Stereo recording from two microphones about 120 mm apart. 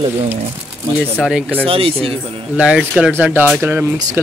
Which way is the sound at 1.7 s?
50° right (ahead or behind).